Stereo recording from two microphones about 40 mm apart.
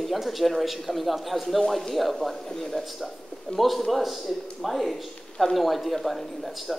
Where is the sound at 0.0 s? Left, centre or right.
Centre.